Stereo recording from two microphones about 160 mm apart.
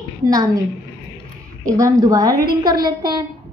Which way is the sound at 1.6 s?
20° right (ahead or behind).